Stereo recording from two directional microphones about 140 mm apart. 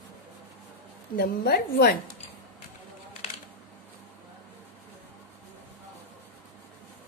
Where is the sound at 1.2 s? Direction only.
90° left.